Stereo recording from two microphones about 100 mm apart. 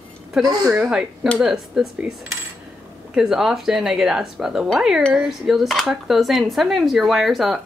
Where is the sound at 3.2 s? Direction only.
5° right (ahead or behind).